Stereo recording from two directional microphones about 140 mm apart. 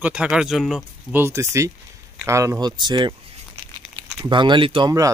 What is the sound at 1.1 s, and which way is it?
Speech, 20° right (ahead or behind).